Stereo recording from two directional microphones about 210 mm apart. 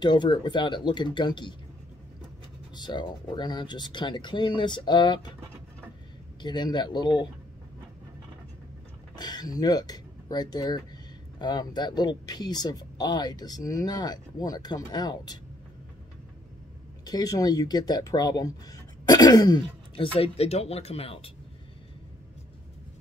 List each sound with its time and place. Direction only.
0.0 s speech: 20° left (ahead or behind)
2.7 s speech: 20° left (ahead or behind)
6.4 s speech: 20° left (ahead or behind)
9.1 s speech: 20° left (ahead or behind)
17.0 s speech: 20° left (ahead or behind)
20.2 s speech: 30° left (ahead or behind)